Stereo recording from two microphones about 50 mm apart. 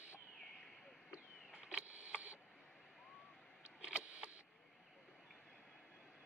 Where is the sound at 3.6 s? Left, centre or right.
Right.